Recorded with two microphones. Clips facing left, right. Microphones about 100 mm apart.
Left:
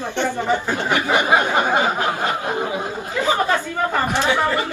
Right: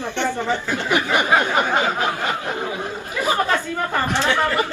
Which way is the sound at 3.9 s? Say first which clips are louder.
Even; 15° left (ahead or behind).